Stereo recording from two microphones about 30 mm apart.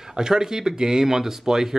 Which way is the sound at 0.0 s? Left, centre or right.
Centre.